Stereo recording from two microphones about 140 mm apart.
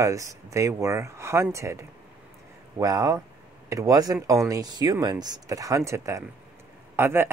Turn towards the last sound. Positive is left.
turn(degrees=-15)  # may be behind; listen again after turning